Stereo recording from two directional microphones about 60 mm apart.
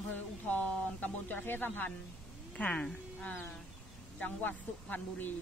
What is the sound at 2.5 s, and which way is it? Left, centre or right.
A man's voice, left.